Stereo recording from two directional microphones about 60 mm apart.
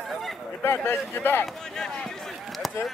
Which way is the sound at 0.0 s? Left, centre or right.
Centre.